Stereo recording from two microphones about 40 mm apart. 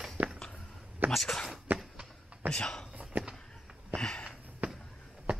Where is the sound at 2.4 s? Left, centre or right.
Right.